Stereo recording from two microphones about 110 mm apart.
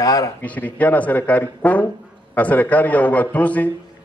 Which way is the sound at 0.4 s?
15° left (ahead or behind).